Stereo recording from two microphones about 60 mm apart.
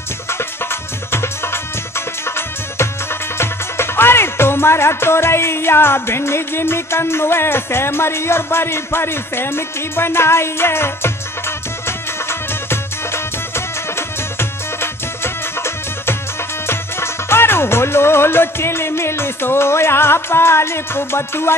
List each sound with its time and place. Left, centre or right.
0.3 s music: left